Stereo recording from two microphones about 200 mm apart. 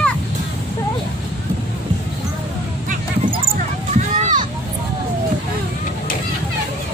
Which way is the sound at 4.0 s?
35° right (ahead or behind).